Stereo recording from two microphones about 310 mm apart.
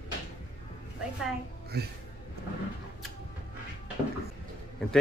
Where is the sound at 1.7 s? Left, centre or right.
Right.